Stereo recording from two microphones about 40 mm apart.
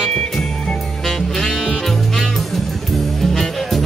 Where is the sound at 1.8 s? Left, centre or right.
Centre.